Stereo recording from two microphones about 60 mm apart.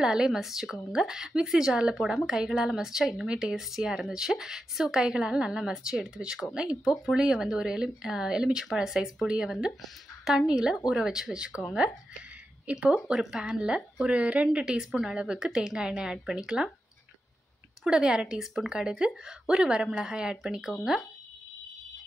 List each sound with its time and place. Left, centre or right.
0.0 s a woman's voice: centre
2.0 s a woman's voice: centre
12.6 s speech: right
12.9 s a woman's voice: centre
17.8 s a woman's voice: centre